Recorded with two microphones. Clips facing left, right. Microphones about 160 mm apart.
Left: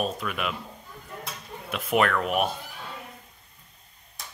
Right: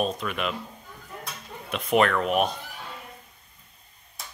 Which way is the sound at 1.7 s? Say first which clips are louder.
Right 2 dB; 5° left (ahead or behind).